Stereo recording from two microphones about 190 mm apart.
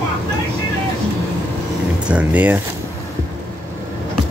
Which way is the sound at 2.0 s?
5° right (ahead or behind).